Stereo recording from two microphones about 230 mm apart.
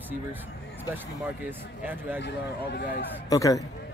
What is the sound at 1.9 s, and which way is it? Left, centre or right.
Speech, centre.